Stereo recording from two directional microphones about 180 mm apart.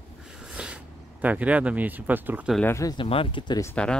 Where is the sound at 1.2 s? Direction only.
10° right (ahead or behind).